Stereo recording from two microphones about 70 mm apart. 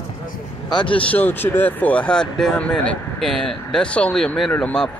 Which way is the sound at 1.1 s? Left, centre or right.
Left.